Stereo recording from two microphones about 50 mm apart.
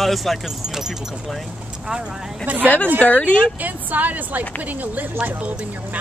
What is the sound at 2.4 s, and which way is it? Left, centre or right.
Speech, right.